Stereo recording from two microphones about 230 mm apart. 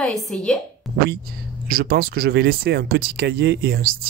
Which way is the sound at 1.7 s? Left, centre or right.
Right.